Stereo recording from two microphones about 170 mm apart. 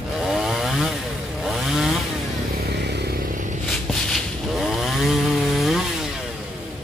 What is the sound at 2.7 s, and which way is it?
Vehicle, 80° right.